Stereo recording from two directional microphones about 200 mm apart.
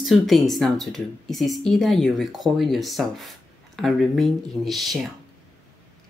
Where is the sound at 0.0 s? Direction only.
Centre (ahead or behind).